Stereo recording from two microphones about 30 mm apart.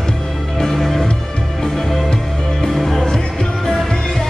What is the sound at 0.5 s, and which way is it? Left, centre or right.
Music, centre.